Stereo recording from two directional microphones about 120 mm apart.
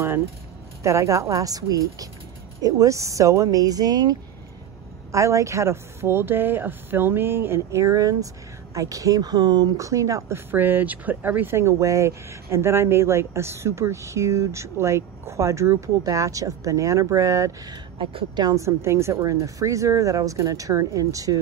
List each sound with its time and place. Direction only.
0.8 s a woman's voice: 25° right (ahead or behind)
17.9 s speech: 40° right (ahead or behind)